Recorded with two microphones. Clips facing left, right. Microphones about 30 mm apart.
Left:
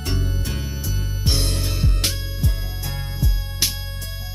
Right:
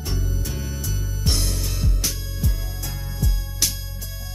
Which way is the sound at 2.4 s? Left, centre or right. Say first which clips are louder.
Left 1 dB; left.